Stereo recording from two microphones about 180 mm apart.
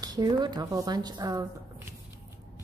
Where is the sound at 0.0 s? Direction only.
20° right (ahead or behind).